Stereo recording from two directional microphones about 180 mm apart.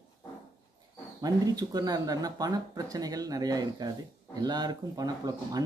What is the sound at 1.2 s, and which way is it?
Speech, 20° right (ahead or behind).